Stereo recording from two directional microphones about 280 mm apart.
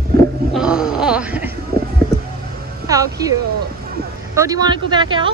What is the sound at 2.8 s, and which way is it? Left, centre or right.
Speech, centre.